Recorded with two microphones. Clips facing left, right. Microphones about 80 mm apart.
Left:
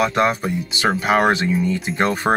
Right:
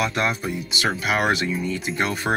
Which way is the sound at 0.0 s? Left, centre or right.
Left.